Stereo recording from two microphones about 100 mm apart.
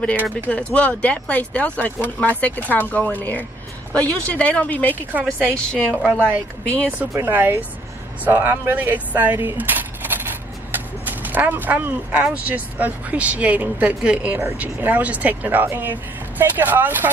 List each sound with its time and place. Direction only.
0.5 s speech: 10° left (ahead or behind)
6.9 s speech: 20° right (ahead or behind)